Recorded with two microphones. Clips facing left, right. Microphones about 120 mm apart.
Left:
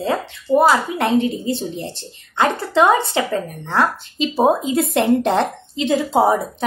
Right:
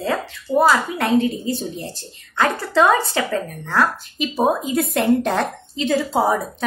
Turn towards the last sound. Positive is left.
turn(degrees=25)  # may be behind; listen again after turning